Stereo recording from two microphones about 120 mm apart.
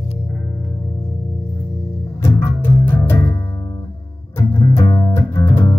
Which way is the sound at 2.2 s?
20° left (ahead or behind).